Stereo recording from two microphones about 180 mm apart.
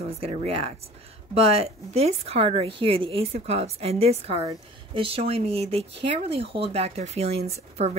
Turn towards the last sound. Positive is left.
turn(degrees=-35)  # may be behind; listen again after turning